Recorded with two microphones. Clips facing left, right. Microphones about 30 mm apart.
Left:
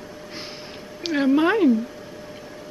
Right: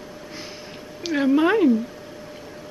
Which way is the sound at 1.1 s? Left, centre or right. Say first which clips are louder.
Even; centre.